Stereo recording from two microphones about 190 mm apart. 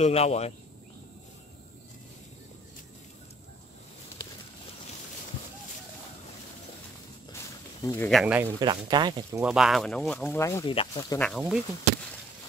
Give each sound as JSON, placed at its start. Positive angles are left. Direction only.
{"t": 0.0, "sound": "speech", "side_deg": 35}
{"t": 7.8, "sound": "speech", "side_deg": 15}
{"t": 8.1, "sound": "speech", "side_deg": -5}
{"t": 8.5, "sound": "speech", "side_deg": -20}
{"t": 9.4, "sound": "speech", "side_deg": -5}
{"t": 10.6, "sound": "speech", "side_deg": 25}
{"t": 11.1, "sound": "speech", "side_deg": 0}